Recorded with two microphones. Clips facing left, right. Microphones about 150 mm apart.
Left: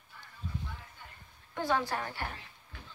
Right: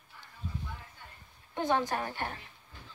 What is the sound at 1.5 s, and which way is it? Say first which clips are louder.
Speech: right 2 dB; 20° right (ahead or behind).